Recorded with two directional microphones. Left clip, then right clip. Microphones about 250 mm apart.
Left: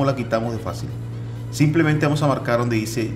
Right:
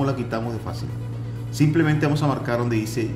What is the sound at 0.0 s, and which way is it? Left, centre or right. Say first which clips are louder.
Speech: left 4 dB; centre.